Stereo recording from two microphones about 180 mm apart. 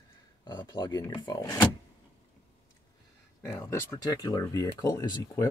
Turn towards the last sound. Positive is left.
turn(degrees=15)  # may be behind; listen again after turning